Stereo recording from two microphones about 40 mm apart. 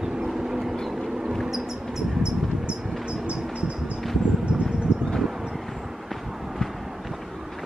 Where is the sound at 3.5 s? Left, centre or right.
Right.